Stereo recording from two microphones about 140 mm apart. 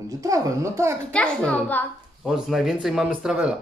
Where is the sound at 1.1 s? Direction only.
10° left (ahead or behind).